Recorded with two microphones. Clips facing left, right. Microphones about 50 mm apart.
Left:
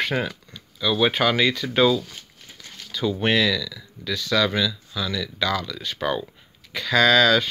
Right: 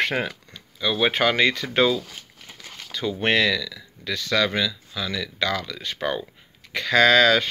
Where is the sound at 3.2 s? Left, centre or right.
Right.